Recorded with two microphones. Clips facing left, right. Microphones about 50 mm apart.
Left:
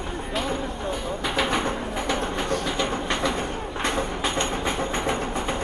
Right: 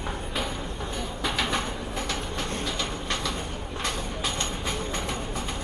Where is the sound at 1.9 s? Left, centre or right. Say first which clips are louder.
Left 5 dB; centre.